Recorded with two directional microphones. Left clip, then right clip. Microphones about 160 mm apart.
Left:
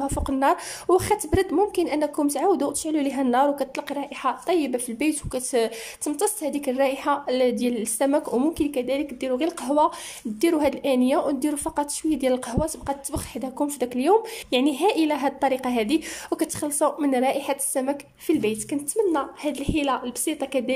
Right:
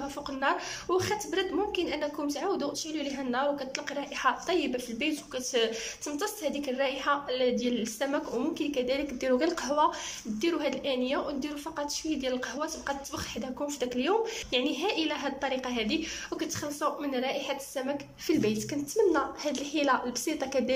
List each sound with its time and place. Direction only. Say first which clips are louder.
0.0 s speech: left 8 dB; 35° left (ahead or behind)
3.9 s speech: right 2 dB; 25° left (ahead or behind)
18.3 s a woman's voice: left 5 dB; 20° left (ahead or behind)